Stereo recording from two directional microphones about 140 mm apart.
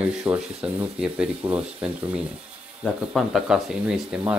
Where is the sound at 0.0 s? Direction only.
10° right (ahead or behind).